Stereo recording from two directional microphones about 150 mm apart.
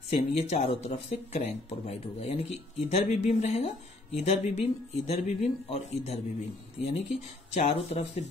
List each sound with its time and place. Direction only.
0.1 s speech: 45° left (ahead or behind)